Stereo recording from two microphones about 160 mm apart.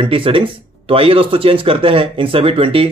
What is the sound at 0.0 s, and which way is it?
Speech, 35° right (ahead or behind).